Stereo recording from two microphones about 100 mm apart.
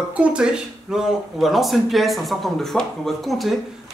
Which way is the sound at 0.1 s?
10° right (ahead or behind).